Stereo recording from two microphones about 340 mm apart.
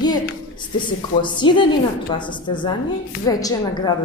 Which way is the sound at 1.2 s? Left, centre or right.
Centre.